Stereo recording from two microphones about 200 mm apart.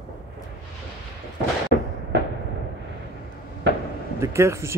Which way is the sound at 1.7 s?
50° left (ahead or behind).